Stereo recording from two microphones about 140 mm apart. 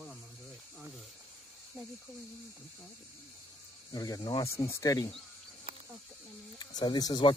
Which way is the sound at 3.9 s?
25° left (ahead or behind).